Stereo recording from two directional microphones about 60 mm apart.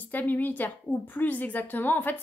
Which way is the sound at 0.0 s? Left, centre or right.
Left.